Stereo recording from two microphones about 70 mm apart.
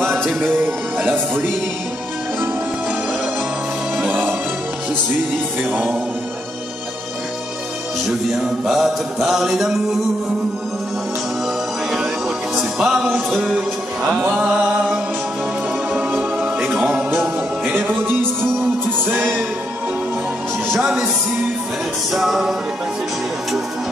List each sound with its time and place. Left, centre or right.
0.2 s music: centre
0.5 s music: right
4.0 s music: right
5.6 s music: right
8.6 s mantra: centre
12.5 s music: centre
14.2 s a sound: centre
15.9 s music: right
20.6 s music: right
22.1 s mantra: centre